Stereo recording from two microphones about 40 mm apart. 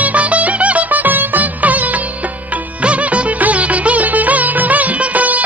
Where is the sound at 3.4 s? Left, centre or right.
Right.